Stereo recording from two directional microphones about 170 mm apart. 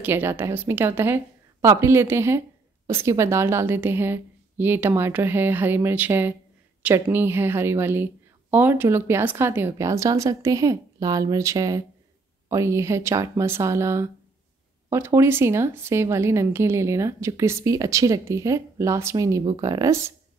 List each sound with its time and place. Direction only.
0.0 s a woman's voice: 10° right (ahead or behind)